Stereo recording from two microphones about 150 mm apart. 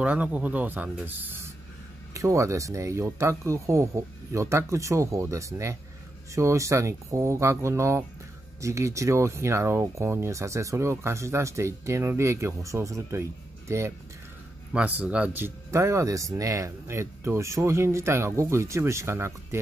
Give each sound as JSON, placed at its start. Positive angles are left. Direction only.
{"t": 0.0, "sound": "speech", "side_deg": -10}